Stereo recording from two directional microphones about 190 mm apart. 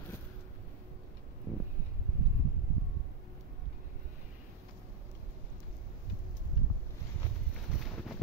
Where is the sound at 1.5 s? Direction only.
5° left (ahead or behind).